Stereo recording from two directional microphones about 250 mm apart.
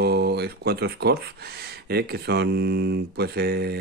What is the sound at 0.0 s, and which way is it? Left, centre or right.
Speech, right.